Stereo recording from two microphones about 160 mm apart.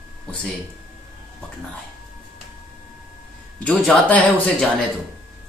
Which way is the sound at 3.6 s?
10° left (ahead or behind).